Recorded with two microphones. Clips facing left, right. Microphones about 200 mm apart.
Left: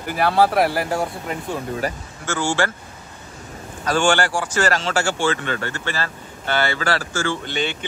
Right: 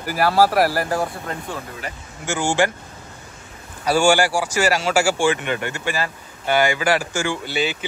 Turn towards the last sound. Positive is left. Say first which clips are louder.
# right 1 dB
turn(degrees=-5)  # may be behind; listen again after turning